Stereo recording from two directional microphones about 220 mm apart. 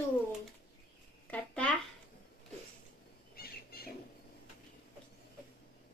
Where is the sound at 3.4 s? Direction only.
45° left (ahead or behind).